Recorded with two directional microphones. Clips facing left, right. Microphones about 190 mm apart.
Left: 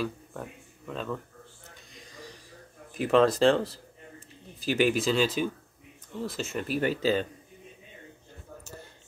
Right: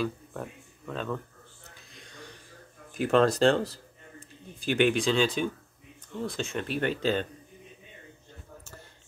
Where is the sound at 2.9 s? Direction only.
Centre (ahead or behind).